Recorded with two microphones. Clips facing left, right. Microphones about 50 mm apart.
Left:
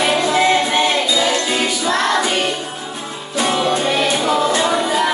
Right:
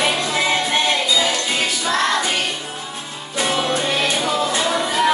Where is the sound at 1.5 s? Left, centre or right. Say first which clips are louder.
Left 3 dB; centre.